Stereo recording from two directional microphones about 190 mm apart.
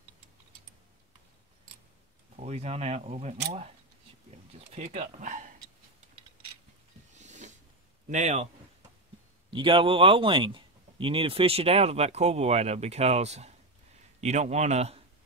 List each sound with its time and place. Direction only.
2.3 s speech: 35° right (ahead or behind)
4.6 s speech: 35° right (ahead or behind)
7.2 s a sound: 40° right (ahead or behind)
8.1 s speech: 40° right (ahead or behind)
9.5 s speech: 25° right (ahead or behind)